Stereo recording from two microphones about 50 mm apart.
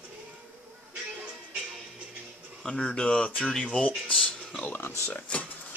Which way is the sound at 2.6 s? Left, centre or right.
Centre.